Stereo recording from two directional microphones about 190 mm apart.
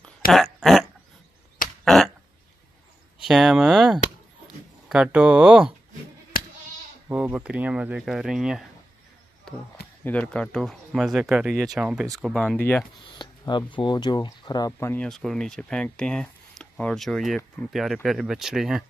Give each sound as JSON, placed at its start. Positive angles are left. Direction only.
{"t": 0.3, "sound": "dog", "side_deg": 0}
{"t": 1.9, "sound": "a sound", "side_deg": 0}
{"t": 3.3, "sound": "speech", "side_deg": 0}
{"t": 6.3, "sound": "bleat", "side_deg": 50}
{"t": 7.1, "sound": "speech", "side_deg": -10}
{"t": 10.0, "sound": "speech", "side_deg": 5}
{"t": 13.2, "sound": "speech", "side_deg": 25}